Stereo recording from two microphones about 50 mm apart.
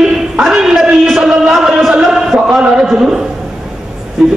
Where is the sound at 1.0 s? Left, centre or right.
Centre.